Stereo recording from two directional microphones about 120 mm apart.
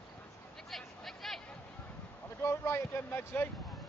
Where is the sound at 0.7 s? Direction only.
Centre (ahead or behind).